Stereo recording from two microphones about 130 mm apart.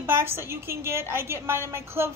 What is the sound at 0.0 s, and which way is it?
A woman's voice, 15° right (ahead or behind).